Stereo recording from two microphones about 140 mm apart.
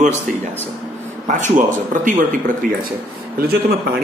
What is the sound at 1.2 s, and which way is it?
A man's voice, 65° right (ahead or behind).